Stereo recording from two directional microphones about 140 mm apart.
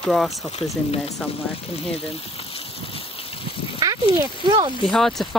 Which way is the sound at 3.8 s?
25° right (ahead or behind).